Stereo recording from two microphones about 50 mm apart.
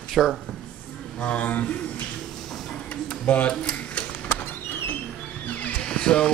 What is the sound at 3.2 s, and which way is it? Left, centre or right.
Speech, left.